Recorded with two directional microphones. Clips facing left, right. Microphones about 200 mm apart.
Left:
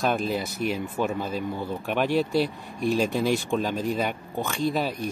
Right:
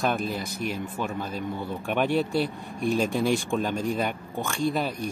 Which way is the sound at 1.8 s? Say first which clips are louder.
Even; centre (ahead or behind).